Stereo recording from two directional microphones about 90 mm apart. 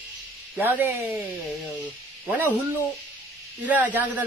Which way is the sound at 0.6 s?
20° right (ahead or behind).